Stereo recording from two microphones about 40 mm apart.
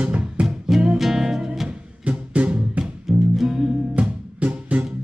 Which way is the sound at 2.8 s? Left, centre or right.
Centre.